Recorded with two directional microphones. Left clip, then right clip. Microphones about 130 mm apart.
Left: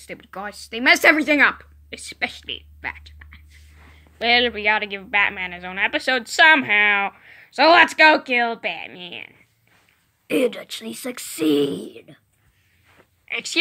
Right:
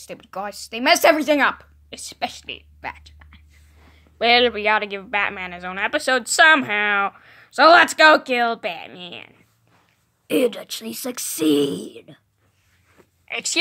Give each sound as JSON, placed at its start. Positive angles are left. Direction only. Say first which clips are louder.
{"t": 0.0, "sound": "a woman's voice", "louder": "right 2 dB", "side_deg": -25}
{"t": 4.2, "sound": "a woman's voice", "louder": "right 2 dB", "side_deg": -35}
{"t": 10.2, "sound": "a woman's voice", "louder": "right 1 dB", "side_deg": -15}
{"t": 13.2, "sound": "speech", "louder": "right 1 dB", "side_deg": -30}